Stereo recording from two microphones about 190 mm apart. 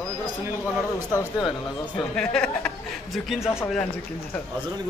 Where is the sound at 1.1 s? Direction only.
20° left (ahead or behind).